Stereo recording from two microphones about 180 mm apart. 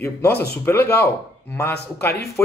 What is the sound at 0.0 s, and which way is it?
Speech, 15° left (ahead or behind).